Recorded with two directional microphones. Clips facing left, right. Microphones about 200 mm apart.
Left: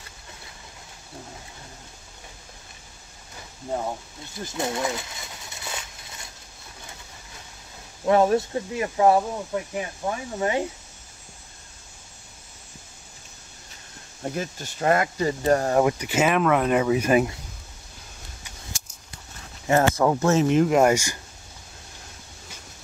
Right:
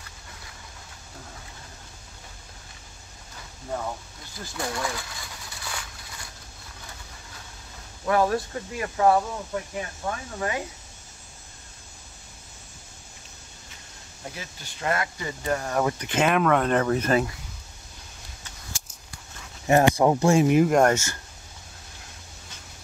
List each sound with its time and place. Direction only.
4.4 s a sound: 20° left (ahead or behind)
8.0 s speech: 25° left (ahead or behind)
14.3 s speech: 45° left (ahead or behind)
15.8 s speech: 15° left (ahead or behind)
19.7 s speech: 15° right (ahead or behind)
20.7 s speech: 10° left (ahead or behind)